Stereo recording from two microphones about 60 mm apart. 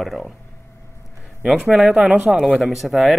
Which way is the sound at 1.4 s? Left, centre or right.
Centre.